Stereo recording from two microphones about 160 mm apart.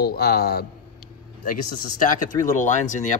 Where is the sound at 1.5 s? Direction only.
55° left (ahead or behind).